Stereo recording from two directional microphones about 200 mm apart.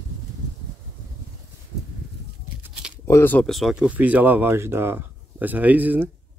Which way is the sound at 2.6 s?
5° right (ahead or behind).